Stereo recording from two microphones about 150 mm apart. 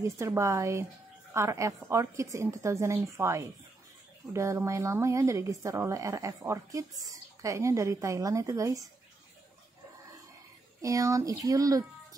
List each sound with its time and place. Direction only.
0.0 s a woman's voice: 20° right (ahead or behind)
10.8 s a woman's voice: 20° right (ahead or behind)